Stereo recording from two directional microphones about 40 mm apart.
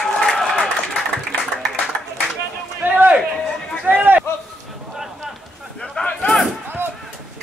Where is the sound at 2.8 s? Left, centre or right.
Right.